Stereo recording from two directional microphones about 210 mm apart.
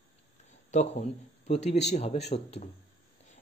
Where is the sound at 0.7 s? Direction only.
35° left (ahead or behind).